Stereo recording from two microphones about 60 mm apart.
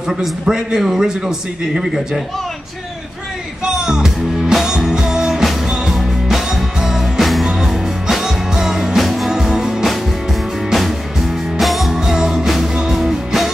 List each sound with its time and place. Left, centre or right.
0.2 s a man's voice: centre
3.6 s music: centre